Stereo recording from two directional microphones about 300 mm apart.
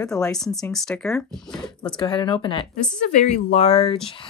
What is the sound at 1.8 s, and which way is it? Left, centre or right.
Speech, centre.